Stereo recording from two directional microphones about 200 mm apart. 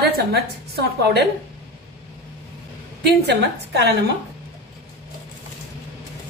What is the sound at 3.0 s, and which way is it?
Speech, 55° right (ahead or behind).